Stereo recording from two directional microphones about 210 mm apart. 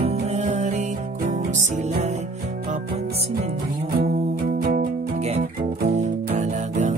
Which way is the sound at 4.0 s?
45° right (ahead or behind).